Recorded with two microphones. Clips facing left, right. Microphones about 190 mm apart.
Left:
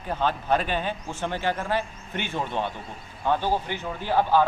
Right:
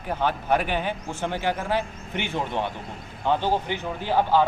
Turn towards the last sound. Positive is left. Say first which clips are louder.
# even
turn(degrees=-15)  # may be behind; listen again after turning